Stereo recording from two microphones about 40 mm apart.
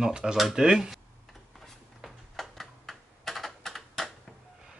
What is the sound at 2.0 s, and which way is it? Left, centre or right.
Typing, centre.